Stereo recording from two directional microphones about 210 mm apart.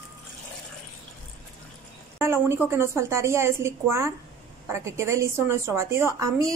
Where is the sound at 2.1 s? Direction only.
10° right (ahead or behind).